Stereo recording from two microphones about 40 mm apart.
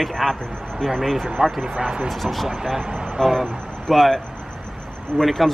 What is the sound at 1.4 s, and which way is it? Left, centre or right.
Speech, right.